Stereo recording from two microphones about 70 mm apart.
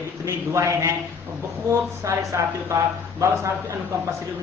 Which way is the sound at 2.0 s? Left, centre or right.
Right.